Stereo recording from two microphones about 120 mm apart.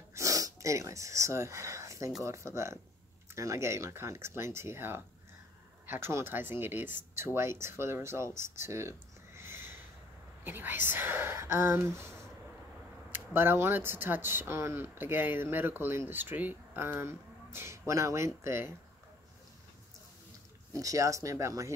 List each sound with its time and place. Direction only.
0.1 s speech: 25° right (ahead or behind)
8.4 s a sound: 20° right (ahead or behind)
10.4 s speech: 15° right (ahead or behind)
20.7 s speech: 25° right (ahead or behind)